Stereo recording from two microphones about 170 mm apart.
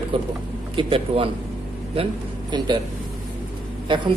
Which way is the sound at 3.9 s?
30° right (ahead or behind).